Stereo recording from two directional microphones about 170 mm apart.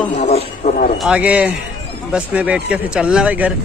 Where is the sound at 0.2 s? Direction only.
45° left (ahead or behind).